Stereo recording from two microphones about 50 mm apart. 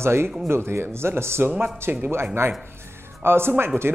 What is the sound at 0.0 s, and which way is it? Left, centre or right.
Speech, right.